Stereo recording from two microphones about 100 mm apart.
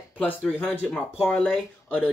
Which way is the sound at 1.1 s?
15° left (ahead or behind).